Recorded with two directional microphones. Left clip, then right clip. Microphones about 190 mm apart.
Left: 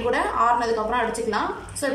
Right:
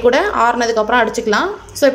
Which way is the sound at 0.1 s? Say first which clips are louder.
Right 7 dB; 50° right (ahead or behind).